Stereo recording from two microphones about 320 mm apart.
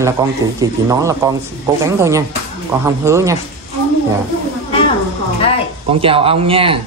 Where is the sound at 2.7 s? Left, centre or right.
Centre.